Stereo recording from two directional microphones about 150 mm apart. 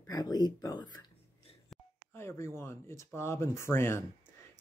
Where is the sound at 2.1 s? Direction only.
15° left (ahead or behind).